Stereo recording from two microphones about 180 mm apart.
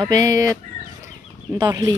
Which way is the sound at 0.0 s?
20° right (ahead or behind).